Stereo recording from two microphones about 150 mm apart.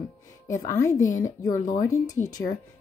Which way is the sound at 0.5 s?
20° left (ahead or behind).